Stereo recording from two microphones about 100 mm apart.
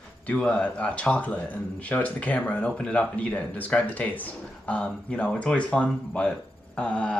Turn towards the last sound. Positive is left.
turn(degrees=10)  # may be behind; listen again after turning